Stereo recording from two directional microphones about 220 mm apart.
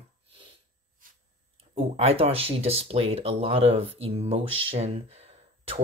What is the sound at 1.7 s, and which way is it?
Speech, 30° right (ahead or behind).